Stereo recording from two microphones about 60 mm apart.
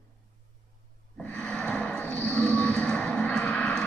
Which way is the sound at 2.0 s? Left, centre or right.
Left.